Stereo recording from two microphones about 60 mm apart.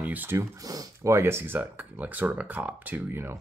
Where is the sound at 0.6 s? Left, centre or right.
Right.